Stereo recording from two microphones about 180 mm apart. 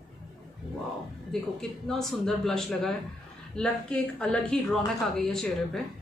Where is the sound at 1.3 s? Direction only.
Centre (ahead or behind).